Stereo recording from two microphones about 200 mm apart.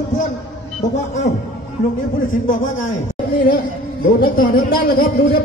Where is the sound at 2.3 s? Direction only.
40° left (ahead or behind).